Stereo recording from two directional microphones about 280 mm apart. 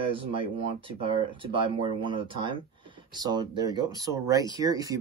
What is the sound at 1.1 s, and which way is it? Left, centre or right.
Speech, centre.